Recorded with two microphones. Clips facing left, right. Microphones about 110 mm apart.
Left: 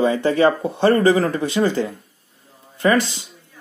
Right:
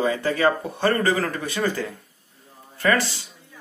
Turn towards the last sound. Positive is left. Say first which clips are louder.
# left 4 dB
turn(degrees=20)  # may be behind; listen again after turning